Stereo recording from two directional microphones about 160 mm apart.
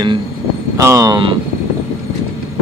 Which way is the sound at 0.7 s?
20° right (ahead or behind).